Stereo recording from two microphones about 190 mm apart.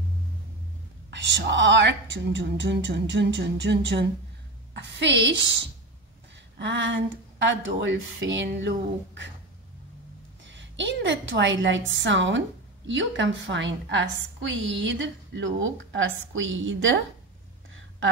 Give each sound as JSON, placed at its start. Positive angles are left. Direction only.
{"t": 1.1, "sound": "a woman's voice", "side_deg": -70}
{"t": 6.6, "sound": "a woman's voice", "side_deg": -70}
{"t": 10.4, "sound": "a woman's voice", "side_deg": -75}